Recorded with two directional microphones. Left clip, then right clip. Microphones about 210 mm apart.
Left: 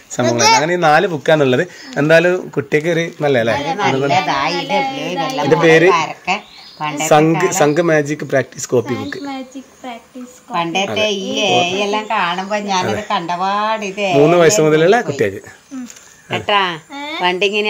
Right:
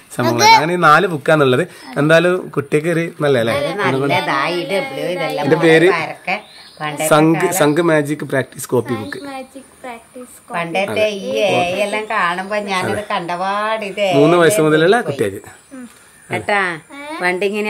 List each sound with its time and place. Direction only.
0.1 s speech: centre (ahead or behind); by 5.5 s 20° right (ahead or behind)
5.5 s a woman's voice: 5° right (ahead or behind)
5.9 s a woman's voice: 15° right (ahead or behind)
10.5 s speech: 20° right (ahead or behind)
13.1 s speech: 30° right (ahead or behind)
14.2 s a woman's voice: centre (ahead or behind)
16.9 s a sound: centre (ahead or behind)
17.2 s speech: 15° right (ahead or behind)